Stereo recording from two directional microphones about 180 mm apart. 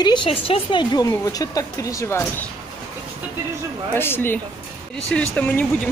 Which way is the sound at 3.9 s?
10° left (ahead or behind).